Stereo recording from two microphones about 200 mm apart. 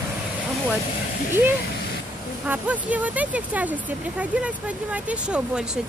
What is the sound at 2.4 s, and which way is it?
Speech, 5° right (ahead or behind).